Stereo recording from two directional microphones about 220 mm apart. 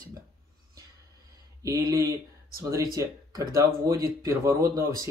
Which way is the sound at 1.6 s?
15° right (ahead or behind).